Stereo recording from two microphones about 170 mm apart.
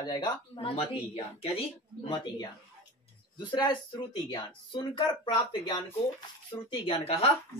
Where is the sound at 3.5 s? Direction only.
25° left (ahead or behind).